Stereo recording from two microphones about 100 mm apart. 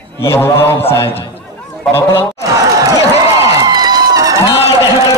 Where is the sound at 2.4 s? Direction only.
35° right (ahead or behind).